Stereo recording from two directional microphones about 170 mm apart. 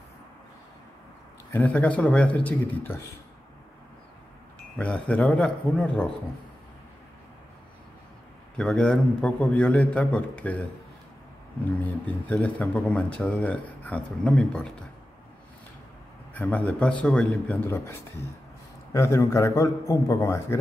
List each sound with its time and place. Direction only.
1.5 s speech: 10° left (ahead or behind)
4.7 s speech: 5° left (ahead or behind)
8.5 s speech: 5° left (ahead or behind)
11.8 s speech: 10° left (ahead or behind)
16.3 s speech: 5° left (ahead or behind)
18.9 s speech: 15° left (ahead or behind)